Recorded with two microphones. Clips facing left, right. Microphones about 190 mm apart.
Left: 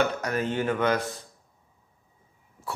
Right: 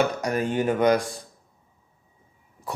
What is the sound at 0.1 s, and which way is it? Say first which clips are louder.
Speech: right 3 dB; 10° right (ahead or behind).